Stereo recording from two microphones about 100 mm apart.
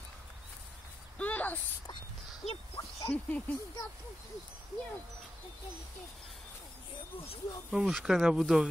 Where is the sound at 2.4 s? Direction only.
90° left.